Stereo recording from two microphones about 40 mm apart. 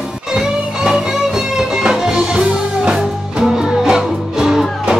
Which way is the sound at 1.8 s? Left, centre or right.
Centre.